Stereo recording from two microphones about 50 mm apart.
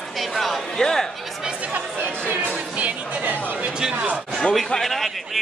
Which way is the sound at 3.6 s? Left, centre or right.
Centre.